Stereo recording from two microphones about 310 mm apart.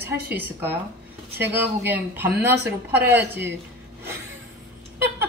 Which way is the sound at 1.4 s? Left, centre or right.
Centre.